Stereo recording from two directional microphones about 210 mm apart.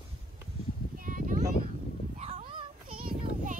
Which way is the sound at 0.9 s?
40° right (ahead or behind).